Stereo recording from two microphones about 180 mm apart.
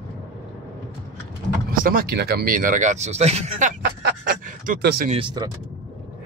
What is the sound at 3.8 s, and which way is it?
Speech, 60° right (ahead or behind).